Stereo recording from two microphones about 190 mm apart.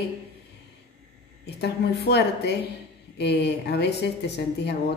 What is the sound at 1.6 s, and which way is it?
A woman's voice, 60° left (ahead or behind).